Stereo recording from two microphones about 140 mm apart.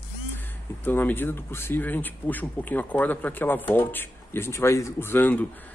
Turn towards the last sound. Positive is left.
turn(degrees=15)  # may be behind; listen again after turning